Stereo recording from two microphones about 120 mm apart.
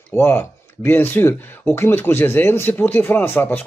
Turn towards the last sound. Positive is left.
turn(degrees=15)  # may be behind; listen again after turning